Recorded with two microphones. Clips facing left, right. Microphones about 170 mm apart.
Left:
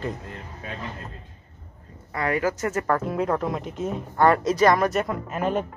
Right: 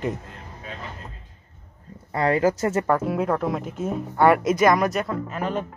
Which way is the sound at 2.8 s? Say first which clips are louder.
Right 2 dB; 5° right (ahead or behind).